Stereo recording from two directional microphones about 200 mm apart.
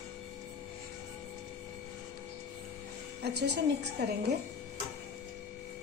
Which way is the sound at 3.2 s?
55° right (ahead or behind).